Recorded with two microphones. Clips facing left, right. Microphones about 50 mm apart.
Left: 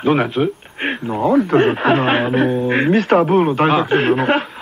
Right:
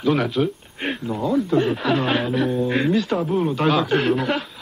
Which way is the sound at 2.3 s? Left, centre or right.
Left.